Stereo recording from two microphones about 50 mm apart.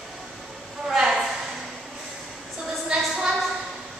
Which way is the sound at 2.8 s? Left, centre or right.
Centre.